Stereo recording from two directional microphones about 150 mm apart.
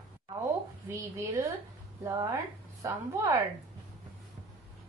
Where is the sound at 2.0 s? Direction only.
20° right (ahead or behind).